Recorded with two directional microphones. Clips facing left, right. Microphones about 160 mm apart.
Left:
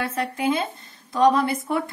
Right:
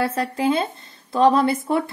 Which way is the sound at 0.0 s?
30° right (ahead or behind).